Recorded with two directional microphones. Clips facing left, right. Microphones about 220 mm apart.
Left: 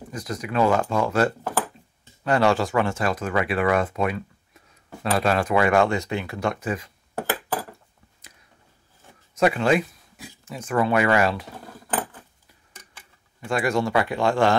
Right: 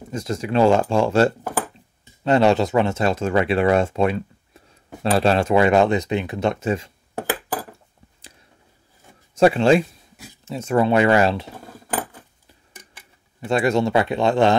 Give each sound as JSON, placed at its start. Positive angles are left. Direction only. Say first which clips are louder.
{"t": 0.1, "sound": "speech", "louder": "right 6 dB", "side_deg": -25}
{"t": 7.2, "sound": "a sound", "louder": "right 1 dB", "side_deg": -15}
{"t": 9.3, "sound": "speech", "louder": "right 5 dB", "side_deg": -30}
{"t": 12.9, "sound": "speech", "louder": "right 1 dB", "side_deg": -20}